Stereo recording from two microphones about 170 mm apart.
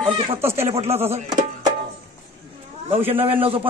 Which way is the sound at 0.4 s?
15° right (ahead or behind).